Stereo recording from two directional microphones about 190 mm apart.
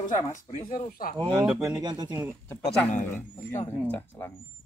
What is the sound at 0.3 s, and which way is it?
Speech, 45° left (ahead or behind).